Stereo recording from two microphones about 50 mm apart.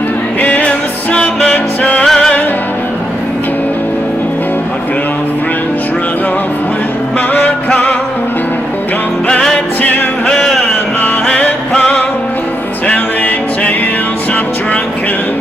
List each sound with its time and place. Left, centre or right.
0.4 s music: left
10.2 s music: centre
11.2 s music: left